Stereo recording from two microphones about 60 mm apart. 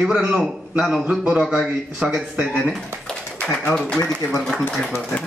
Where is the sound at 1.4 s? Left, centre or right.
Centre.